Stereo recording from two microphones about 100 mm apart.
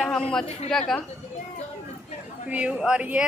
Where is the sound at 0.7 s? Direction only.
5° left (ahead or behind).